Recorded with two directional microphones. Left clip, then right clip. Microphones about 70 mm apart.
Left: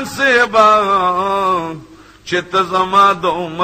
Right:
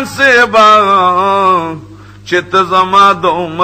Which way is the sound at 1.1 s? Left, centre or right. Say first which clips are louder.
Right 6 dB; right.